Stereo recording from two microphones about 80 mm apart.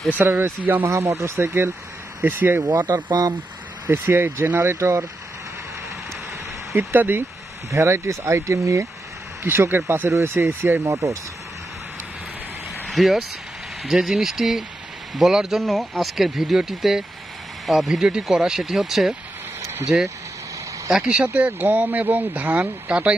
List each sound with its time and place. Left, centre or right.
0.2 s speech: right
0.8 s speech: right
6.7 s speech: right
9.4 s speech: right
10.8 s speech: right
12.8 s speech: centre
19.6 s vehicle: right
21.2 s speech: centre